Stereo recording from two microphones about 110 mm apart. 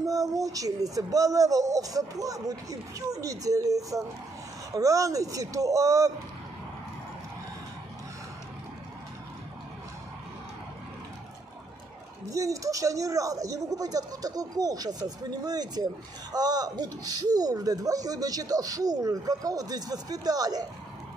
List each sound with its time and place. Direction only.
0.0 s speech: 35° right (ahead or behind)
12.3 s speech: 30° right (ahead or behind)